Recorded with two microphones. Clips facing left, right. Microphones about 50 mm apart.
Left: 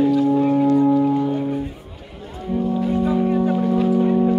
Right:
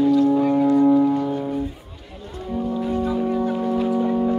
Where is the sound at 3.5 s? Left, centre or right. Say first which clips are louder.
Left 3 dB; centre.